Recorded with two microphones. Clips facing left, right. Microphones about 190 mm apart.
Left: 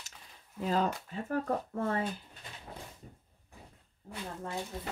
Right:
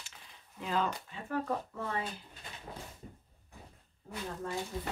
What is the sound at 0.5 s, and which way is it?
Speech, 40° left (ahead or behind).